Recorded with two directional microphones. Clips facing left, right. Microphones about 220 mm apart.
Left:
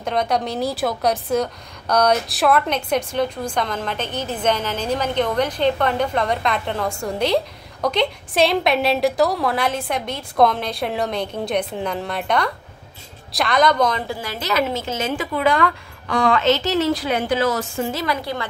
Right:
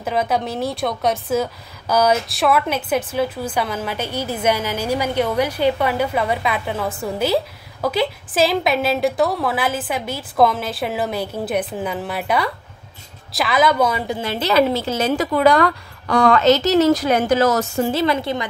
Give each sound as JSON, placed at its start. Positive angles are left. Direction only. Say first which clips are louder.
{"t": 0.0, "sound": "a woman's voice", "louder": "right 1 dB", "side_deg": -5}
{"t": 14.0, "sound": "a woman's voice", "louder": "right 5 dB", "side_deg": -25}
{"t": 17.9, "sound": "a woman's voice", "louder": "right 5 dB", "side_deg": -25}